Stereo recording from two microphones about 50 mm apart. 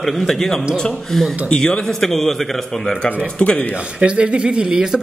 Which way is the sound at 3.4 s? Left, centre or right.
Left.